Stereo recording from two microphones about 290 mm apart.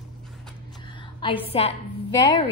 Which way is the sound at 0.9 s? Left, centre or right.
Centre.